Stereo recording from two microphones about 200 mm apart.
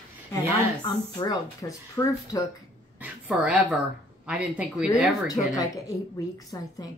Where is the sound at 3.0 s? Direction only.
5° right (ahead or behind).